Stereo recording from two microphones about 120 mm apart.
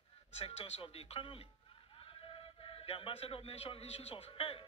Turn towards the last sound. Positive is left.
turn(degrees=55)  # may be behind; listen again after turning